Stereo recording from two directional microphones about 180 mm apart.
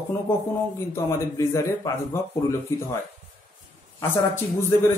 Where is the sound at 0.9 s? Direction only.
15° left (ahead or behind).